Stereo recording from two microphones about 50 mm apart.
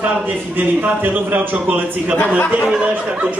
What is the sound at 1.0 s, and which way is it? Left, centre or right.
Speech, right.